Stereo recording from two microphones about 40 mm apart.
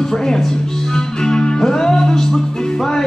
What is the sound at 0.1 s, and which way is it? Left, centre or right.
Music, centre.